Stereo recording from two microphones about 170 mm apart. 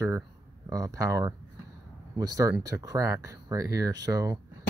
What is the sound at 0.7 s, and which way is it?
Speech, 20° right (ahead or behind).